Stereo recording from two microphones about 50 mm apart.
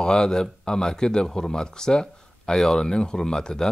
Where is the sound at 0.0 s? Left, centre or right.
Centre.